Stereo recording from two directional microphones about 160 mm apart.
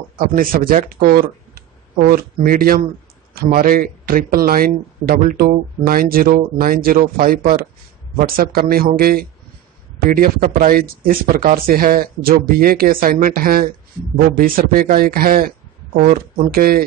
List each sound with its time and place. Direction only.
0.2 s speech: 60° right (ahead or behind)